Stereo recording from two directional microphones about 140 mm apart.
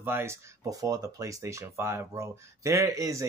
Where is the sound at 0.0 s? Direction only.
15° right (ahead or behind).